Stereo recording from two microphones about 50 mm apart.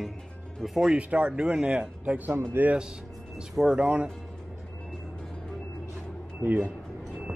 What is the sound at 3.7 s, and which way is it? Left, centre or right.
Speech, right.